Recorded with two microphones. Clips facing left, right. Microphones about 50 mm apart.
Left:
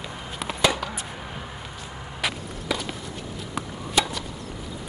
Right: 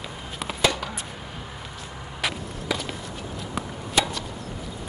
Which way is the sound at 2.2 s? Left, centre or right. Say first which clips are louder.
Even; centre.